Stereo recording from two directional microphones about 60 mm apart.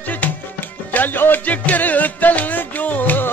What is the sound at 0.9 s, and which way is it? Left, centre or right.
Music, left.